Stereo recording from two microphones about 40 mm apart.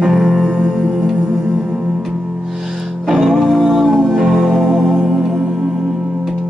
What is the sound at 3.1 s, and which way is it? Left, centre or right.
Music, centre.